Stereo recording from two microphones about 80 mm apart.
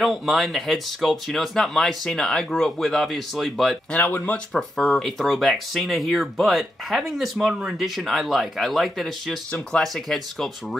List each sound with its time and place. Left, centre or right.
0.0 s speech: centre
3.9 s speech: centre
4.7 s speech: centre